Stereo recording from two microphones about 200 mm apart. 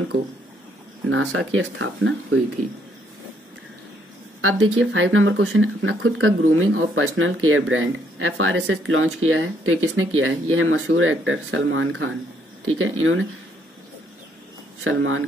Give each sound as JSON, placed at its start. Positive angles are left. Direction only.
{"t": 1.1, "sound": "speech", "side_deg": -90}
{"t": 4.4, "sound": "speech", "side_deg": -90}
{"t": 14.8, "sound": "speech", "side_deg": -85}